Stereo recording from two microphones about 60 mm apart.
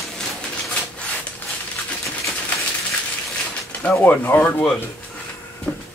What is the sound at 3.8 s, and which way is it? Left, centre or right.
Speech, left.